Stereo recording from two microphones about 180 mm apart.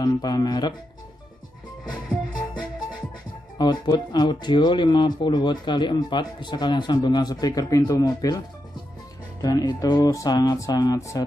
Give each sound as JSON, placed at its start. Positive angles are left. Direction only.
{"t": 0.0, "sound": "speech", "side_deg": 20}
{"t": 3.5, "sound": "speech", "side_deg": 25}
{"t": 9.4, "sound": "speech", "side_deg": 20}